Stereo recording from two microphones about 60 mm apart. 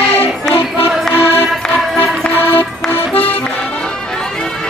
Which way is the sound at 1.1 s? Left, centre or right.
Left.